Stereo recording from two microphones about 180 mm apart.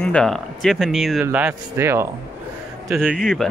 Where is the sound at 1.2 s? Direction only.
10° right (ahead or behind).